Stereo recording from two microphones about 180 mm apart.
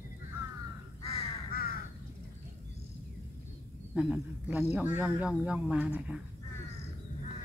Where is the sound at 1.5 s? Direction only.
55° left (ahead or behind).